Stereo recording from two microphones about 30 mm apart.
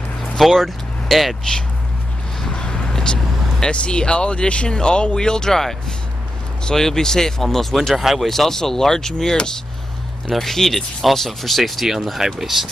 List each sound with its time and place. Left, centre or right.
0.4 s speech: centre
2.5 s vehicle: left
3.7 s speech: left
5.5 s speech: centre
7.4 s speech: centre
7.9 s speech: centre
8.2 s speech: centre